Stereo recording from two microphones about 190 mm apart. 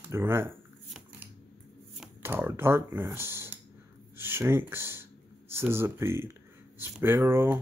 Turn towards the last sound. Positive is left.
turn(degrees=-10)  # may be behind; listen again after turning